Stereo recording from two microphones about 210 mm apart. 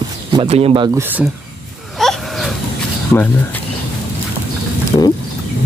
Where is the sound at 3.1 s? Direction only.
10° left (ahead or behind).